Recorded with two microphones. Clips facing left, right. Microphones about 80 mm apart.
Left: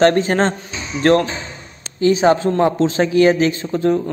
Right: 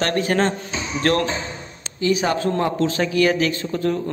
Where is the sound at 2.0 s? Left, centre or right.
Left.